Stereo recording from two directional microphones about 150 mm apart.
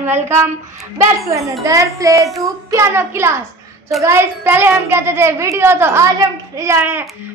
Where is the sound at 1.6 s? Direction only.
20° right (ahead or behind).